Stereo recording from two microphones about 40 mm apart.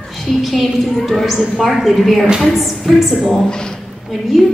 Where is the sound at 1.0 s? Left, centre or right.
Centre.